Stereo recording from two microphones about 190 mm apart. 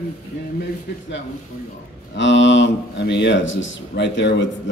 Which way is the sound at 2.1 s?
75° left (ahead or behind).